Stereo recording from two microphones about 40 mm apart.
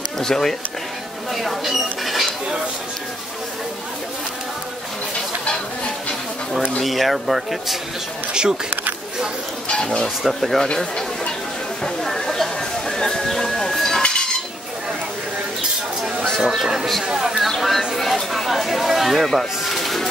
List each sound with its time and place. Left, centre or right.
0.2 s speech: centre
1.3 s speech: centre
6.8 s speech: centre
8.3 s speech: right
10.0 s speech: centre
10.7 s speech: centre
11.8 s a sound: centre
16.3 s speech: centre
16.6 s speech: centre
17.6 s speech: centre